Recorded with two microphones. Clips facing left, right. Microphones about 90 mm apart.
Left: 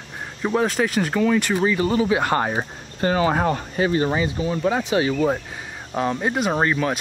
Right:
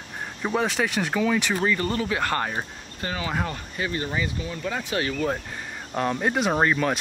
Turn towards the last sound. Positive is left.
turn(degrees=0)  # may be behind; listen again after turning